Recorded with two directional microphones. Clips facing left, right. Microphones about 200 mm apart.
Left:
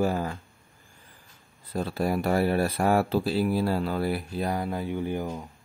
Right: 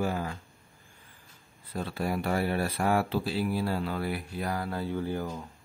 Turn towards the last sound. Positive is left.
turn(degrees=15)  # may be behind; listen again after turning